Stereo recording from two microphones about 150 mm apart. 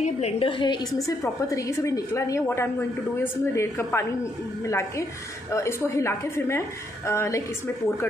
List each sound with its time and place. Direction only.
0.0 s a woman's voice: 40° left (ahead or behind); by 8.1 s 15° left (ahead or behind)